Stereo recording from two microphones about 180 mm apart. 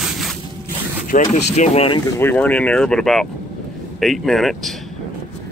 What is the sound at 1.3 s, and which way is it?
Speech, 35° left (ahead or behind).